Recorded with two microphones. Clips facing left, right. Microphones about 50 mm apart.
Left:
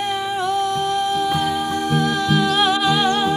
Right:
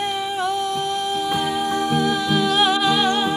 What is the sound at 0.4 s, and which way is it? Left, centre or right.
Music, centre.